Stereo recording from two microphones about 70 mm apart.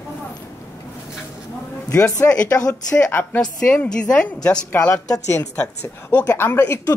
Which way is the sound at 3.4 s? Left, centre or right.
Centre.